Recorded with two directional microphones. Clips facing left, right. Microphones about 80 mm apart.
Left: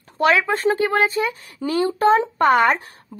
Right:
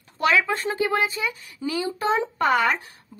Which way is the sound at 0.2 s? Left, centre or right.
Left.